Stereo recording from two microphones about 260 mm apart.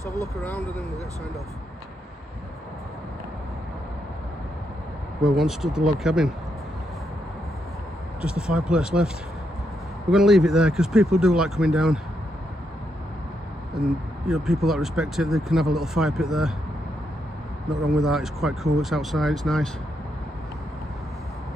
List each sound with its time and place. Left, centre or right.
0.0 s speech: centre
0.4 s speech: centre
5.2 s speech: centre
8.2 s speech: centre
10.1 s speech: centre
14.2 s speech: centre
17.8 s speech: centre